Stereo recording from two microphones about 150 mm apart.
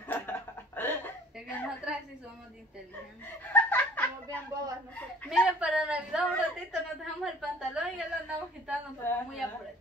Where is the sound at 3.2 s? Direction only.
10° left (ahead or behind).